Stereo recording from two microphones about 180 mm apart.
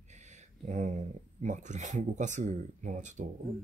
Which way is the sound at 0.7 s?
45° right (ahead or behind).